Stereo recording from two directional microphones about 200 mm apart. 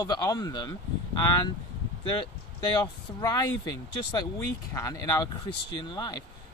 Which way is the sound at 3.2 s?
20° left (ahead or behind).